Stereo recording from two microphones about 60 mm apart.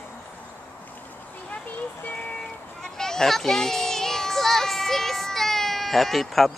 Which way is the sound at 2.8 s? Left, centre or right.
Centre.